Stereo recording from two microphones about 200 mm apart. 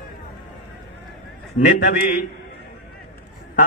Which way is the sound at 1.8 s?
45° left (ahead or behind).